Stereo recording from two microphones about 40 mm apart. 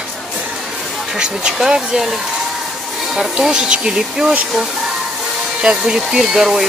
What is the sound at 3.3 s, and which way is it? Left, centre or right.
Speech, centre.